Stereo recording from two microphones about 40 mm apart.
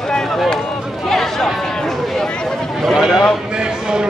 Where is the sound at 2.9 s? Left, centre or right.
Centre.